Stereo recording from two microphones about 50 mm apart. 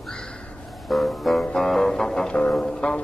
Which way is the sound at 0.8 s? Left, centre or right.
Centre.